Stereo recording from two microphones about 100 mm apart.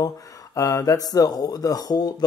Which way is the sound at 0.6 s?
35° left (ahead or behind).